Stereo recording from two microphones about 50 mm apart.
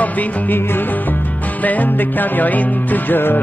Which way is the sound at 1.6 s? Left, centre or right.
Left.